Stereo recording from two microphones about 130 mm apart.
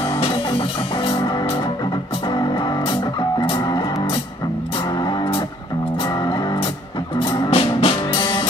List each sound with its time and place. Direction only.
2.9 s music: 40° left (ahead or behind)
7.3 s music: 45° left (ahead or behind)
8.1 s music: 35° left (ahead or behind)